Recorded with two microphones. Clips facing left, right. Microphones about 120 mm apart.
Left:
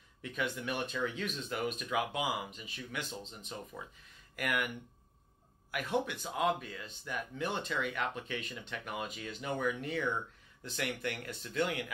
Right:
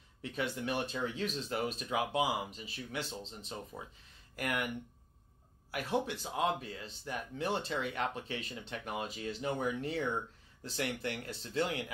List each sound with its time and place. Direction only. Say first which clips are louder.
0.2 s speech: right 1 dB; 35° right (ahead or behind)
4.4 s speech: left 1 dB; 35° right (ahead or behind)
5.7 s speech: even; 30° right (ahead or behind)